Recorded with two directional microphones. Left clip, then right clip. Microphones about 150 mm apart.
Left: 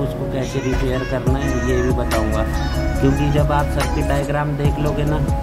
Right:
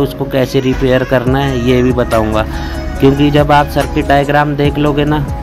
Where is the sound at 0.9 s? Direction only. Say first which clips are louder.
Right 10 dB; 45° right (ahead or behind).